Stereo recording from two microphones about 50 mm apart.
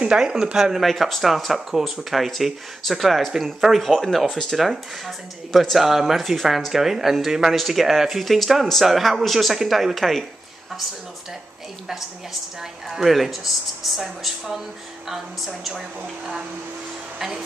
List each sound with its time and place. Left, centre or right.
0.0 s speech: centre
0.8 s speech: centre
4.6 s speech: centre
12.9 s speech: centre